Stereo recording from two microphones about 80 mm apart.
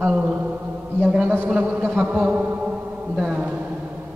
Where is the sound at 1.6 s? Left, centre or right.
Right.